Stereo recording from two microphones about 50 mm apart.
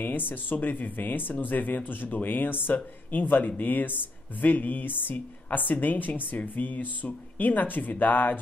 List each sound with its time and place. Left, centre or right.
0.3 s a woman's voice: left